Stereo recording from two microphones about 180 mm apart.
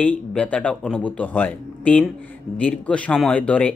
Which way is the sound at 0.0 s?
10° left (ahead or behind).